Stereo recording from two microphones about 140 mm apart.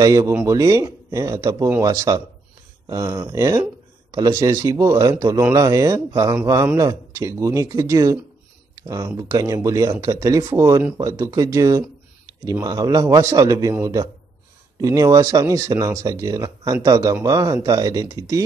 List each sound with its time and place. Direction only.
0.0 s speech: 20° right (ahead or behind)